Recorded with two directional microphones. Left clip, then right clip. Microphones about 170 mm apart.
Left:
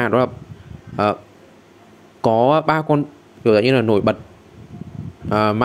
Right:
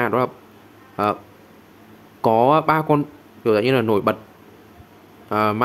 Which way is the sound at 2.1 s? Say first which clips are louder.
Left 1 dB; 15° left (ahead or behind).